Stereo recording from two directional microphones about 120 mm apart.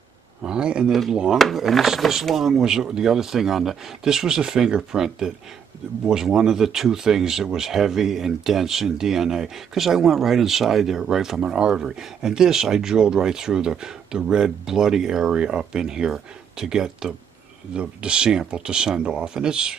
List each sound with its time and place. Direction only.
0.4 s speech: 5° right (ahead or behind)